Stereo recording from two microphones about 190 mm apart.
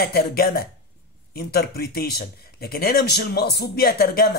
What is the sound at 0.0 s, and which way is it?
Speech, 55° left (ahead or behind).